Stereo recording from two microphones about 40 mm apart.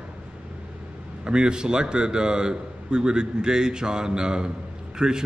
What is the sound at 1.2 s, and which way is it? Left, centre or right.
A man's voice, right.